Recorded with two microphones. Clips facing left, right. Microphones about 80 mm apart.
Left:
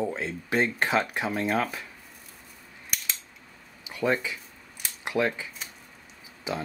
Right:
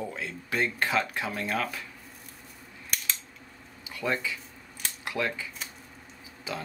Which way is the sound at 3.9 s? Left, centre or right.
Left.